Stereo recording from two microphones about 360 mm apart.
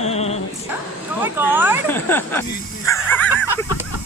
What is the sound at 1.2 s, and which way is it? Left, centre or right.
Speech, centre.